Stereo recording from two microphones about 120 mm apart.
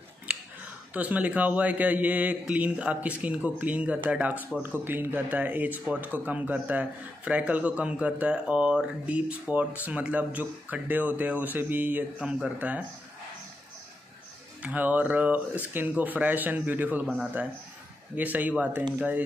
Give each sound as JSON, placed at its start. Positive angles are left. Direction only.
{"t": 0.9, "sound": "speech", "side_deg": -10}
{"t": 12.2, "sound": "speech", "side_deg": -5}
{"t": 14.6, "sound": "speech", "side_deg": -10}